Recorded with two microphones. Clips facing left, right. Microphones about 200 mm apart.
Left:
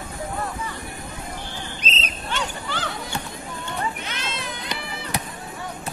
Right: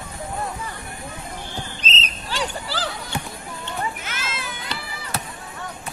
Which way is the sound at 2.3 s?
35° right (ahead or behind).